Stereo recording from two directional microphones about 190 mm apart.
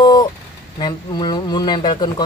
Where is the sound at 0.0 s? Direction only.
20° left (ahead or behind).